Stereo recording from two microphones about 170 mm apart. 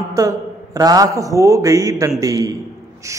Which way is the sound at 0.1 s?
20° right (ahead or behind).